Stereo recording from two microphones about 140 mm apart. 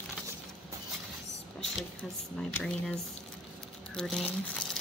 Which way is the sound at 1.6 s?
5° left (ahead or behind).